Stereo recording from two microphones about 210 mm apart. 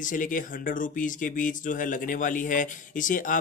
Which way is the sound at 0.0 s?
40° left (ahead or behind).